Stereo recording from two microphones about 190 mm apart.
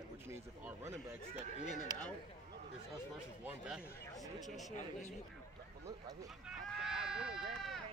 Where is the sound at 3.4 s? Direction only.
5° right (ahead or behind).